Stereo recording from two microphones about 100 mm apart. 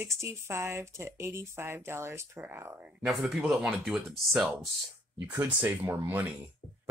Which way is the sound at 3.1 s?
Centre (ahead or behind).